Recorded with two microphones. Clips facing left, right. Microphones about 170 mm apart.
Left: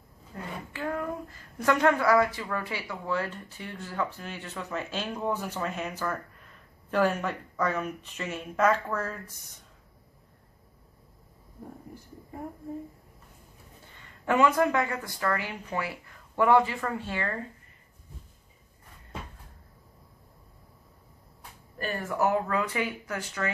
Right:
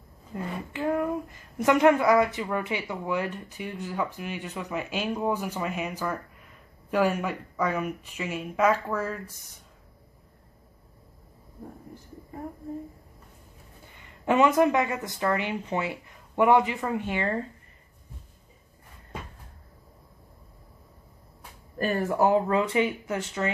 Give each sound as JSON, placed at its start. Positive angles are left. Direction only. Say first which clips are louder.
{"t": 0.3, "sound": "a child's voice", "louder": "right 5 dB", "side_deg": -20}
{"t": 14.2, "sound": "speech", "louder": "right 3 dB", "side_deg": -20}
{"t": 21.7, "sound": "speech", "louder": "right 5 dB", "side_deg": -30}